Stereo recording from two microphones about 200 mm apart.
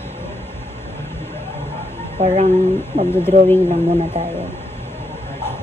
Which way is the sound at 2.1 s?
35° right (ahead or behind).